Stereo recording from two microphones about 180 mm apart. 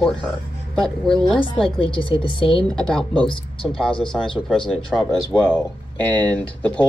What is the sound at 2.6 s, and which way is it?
Speech, 5° left (ahead or behind).